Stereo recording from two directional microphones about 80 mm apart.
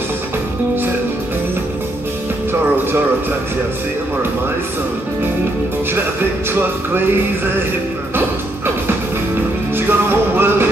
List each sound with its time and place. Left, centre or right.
6.5 s music: right
9.8 s music: right